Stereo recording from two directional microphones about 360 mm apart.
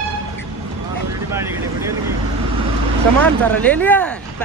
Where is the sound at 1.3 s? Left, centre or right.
Centre.